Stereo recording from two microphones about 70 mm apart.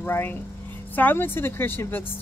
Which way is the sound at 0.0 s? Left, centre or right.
Left.